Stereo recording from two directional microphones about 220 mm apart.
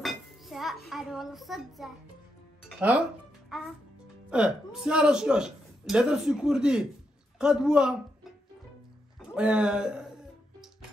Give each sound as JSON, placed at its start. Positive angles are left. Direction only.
{"t": 0.0, "sound": "a sound", "side_deg": 0}
{"t": 2.7, "sound": "speech", "side_deg": -5}
{"t": 4.3, "sound": "a man's voice", "side_deg": -5}
{"t": 9.3, "sound": "a man's voice", "side_deg": -5}